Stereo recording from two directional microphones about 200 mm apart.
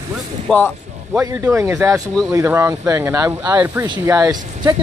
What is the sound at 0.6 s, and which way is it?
Speech, 10° right (ahead or behind).